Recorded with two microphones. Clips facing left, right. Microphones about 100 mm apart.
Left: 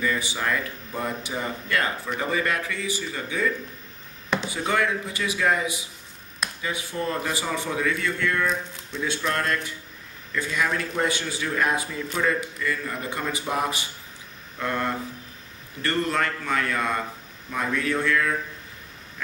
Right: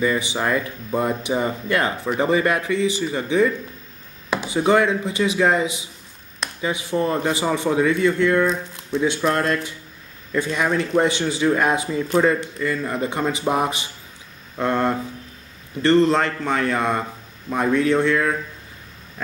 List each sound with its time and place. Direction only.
0.0 s speech: 20° right (ahead or behind)